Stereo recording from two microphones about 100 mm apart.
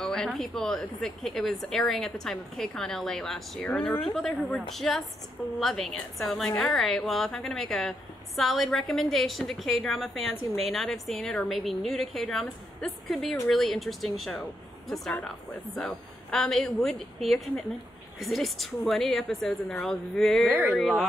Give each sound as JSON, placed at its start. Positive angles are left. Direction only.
{"t": 0.0, "sound": "speech", "side_deg": 5}
{"t": 20.4, "sound": "speech", "side_deg": -15}